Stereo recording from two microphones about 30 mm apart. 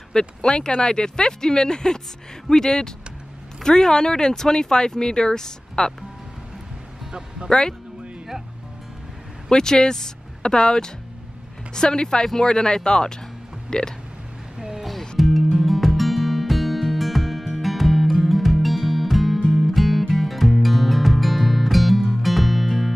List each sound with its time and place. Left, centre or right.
0.1 s speech: left
7.1 s music: right
7.4 s speech: left
9.5 s speech: left
14.9 s music: centre